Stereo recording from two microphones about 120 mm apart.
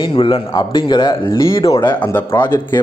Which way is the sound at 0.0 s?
45° left (ahead or behind).